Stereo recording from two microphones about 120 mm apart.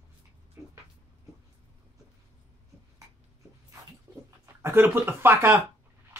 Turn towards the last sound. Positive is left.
turn(degrees=-20)  # may be behind; listen again after turning